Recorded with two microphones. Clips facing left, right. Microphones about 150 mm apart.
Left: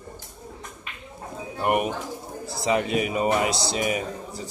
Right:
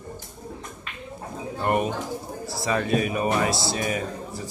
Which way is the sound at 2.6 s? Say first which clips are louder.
Left 1 dB; 20° left (ahead or behind).